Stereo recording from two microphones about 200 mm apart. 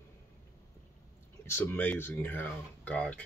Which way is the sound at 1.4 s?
10° left (ahead or behind).